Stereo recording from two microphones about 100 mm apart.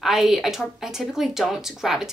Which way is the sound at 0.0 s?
Centre (ahead or behind).